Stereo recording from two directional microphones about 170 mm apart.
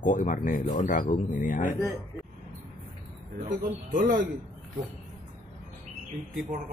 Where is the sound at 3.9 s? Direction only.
55° right (ahead or behind).